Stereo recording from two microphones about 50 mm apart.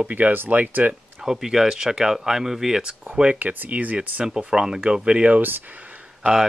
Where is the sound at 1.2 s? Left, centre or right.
Centre.